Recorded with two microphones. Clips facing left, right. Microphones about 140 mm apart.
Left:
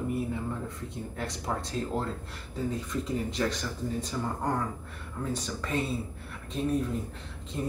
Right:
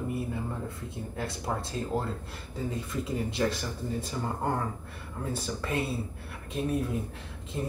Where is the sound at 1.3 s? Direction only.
5° right (ahead or behind).